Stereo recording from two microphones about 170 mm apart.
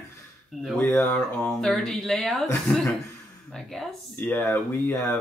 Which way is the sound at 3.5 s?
Centre (ahead or behind).